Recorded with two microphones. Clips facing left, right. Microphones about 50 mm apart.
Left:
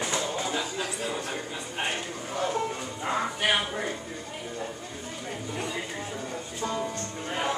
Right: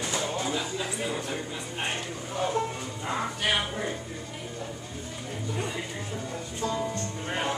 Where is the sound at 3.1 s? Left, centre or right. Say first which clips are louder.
Left 2 dB; centre.